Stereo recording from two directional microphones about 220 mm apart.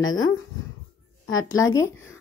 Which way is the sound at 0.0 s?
65° left (ahead or behind).